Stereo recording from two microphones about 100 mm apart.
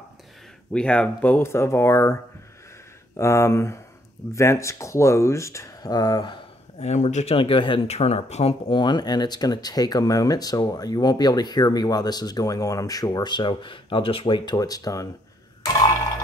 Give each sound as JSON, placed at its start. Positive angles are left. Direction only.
{"t": 0.7, "sound": "speech", "side_deg": 10}
{"t": 3.2, "sound": "speech", "side_deg": 30}
{"t": 6.8, "sound": "speech", "side_deg": 80}
{"t": 8.7, "sound": "speech", "side_deg": 50}